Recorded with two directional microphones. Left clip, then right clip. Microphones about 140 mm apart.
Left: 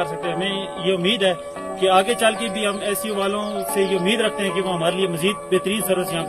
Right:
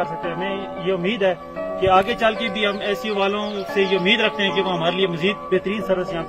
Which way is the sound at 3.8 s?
35° left (ahead or behind).